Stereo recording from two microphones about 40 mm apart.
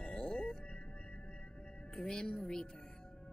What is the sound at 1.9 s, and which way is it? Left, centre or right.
Speech, left.